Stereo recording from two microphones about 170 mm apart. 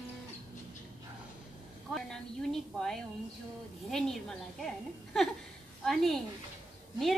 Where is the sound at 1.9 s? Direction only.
Centre (ahead or behind).